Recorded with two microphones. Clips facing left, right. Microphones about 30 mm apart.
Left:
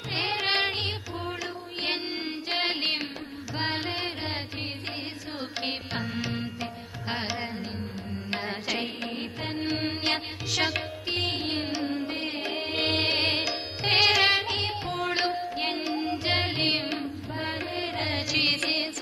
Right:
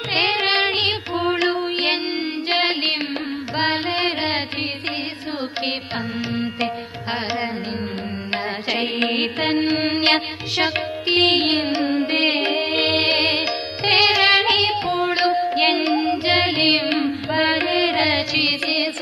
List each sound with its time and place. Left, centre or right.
0.1 s music: right
2.5 s music: right
8.3 s music: right
8.8 s mantra: right
10.5 s music: right
11.1 s music: right
12.8 s music: right
13.2 s music: right
14.3 s carnatic music: right
17.3 s mantra: right
18.3 s music: right